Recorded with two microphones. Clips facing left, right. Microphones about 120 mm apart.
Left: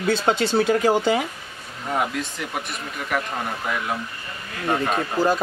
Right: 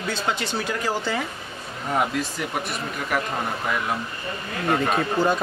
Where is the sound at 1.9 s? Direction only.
Centre (ahead or behind).